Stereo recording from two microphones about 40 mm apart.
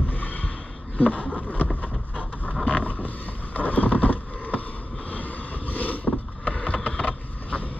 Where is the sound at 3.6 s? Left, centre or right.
Left.